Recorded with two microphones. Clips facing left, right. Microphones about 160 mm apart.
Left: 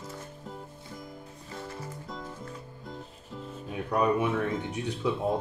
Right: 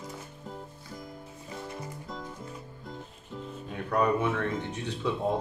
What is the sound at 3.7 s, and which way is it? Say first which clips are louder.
Speech: even; 10° left (ahead or behind).